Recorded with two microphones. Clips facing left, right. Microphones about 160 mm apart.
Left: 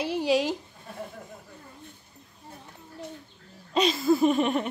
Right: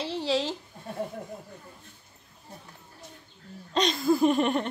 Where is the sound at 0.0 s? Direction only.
15° left (ahead or behind).